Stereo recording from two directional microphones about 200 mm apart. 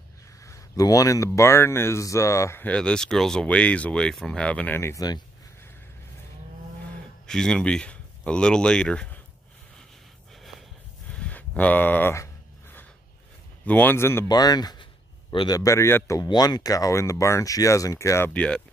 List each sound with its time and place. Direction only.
0.4 s speech: 15° left (ahead or behind)
7.2 s speech: 5° left (ahead or behind)
11.1 s a sound: 5° left (ahead or behind)
13.7 s speech: 10° left (ahead or behind)